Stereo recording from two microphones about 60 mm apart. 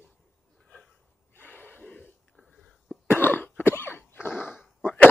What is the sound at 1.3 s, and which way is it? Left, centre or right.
Gasp, left.